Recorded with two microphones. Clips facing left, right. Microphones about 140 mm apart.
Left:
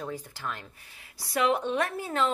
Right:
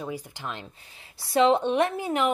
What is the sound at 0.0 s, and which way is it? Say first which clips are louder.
A woman's voice: right 2 dB; 15° right (ahead or behind).